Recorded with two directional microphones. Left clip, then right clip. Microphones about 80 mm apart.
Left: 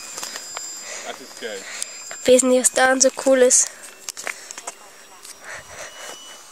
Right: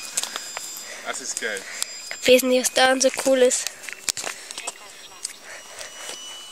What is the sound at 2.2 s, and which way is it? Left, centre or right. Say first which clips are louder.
Speech: left 2 dB; left.